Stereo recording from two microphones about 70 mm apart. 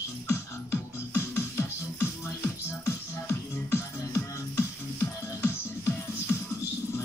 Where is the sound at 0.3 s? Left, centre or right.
Left.